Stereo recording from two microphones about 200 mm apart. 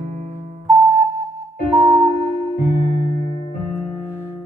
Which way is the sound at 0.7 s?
15° right (ahead or behind).